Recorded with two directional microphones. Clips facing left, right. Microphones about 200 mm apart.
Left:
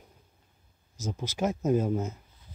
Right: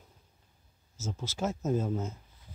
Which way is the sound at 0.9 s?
15° left (ahead or behind).